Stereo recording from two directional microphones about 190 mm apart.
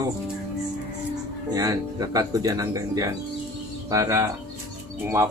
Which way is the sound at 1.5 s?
20° right (ahead or behind).